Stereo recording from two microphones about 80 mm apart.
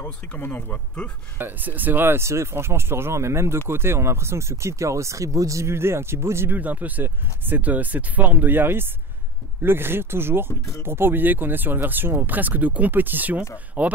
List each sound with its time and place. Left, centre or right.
0.0 s speech: left
1.4 s speech: right